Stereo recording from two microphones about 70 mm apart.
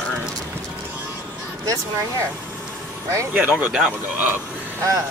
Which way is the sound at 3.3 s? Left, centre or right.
Right.